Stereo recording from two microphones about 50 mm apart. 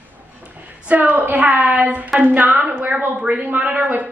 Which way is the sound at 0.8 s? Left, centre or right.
Right.